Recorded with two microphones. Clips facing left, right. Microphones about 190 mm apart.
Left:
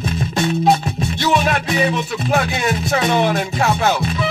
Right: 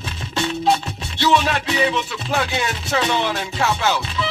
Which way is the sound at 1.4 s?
50° left (ahead or behind).